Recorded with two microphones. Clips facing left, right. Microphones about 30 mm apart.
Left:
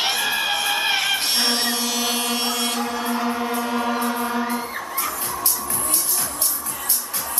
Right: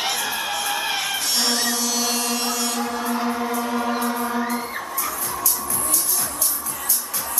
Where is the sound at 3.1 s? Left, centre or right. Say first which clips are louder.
Even; centre.